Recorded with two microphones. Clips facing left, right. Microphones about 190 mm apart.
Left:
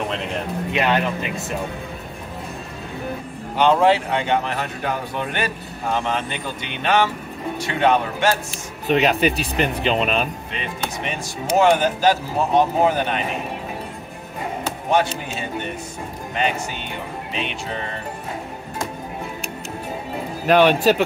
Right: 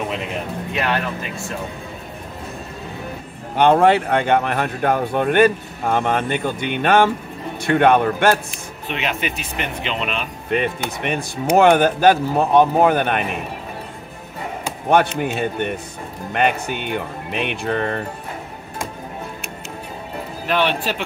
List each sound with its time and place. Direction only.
0.7 s speech: 20° left (ahead or behind)
3.5 s a man's voice: 55° right (ahead or behind)
8.8 s speech: 40° left (ahead or behind)
10.5 s speech: 55° right (ahead or behind)
14.9 s speech: 60° right (ahead or behind)
20.4 s speech: 45° left (ahead or behind)